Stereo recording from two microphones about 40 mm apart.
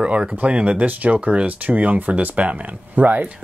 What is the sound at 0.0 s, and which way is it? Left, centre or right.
Speech, right.